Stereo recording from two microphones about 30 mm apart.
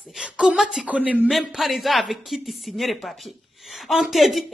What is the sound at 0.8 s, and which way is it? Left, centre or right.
Speech, right.